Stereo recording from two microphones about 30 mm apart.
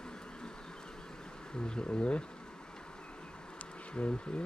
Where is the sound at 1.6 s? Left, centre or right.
Left.